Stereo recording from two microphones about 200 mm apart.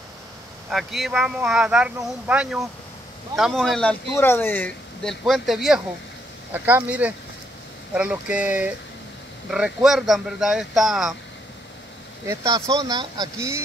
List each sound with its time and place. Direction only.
0.7 s speech: centre (ahead or behind)
12.3 s speech: 20° right (ahead or behind)